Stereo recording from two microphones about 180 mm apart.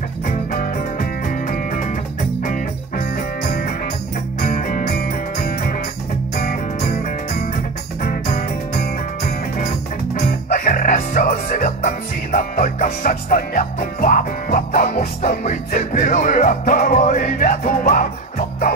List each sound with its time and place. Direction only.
1.5 s music: 45° left (ahead or behind)
3.4 s music: 45° left (ahead or behind)
8.0 s music: 45° left (ahead or behind)